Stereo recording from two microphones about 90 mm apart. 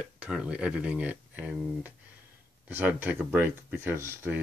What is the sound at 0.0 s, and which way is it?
Speech, 10° right (ahead or behind).